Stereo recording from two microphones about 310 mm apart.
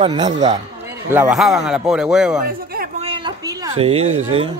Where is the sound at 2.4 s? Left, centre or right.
Right.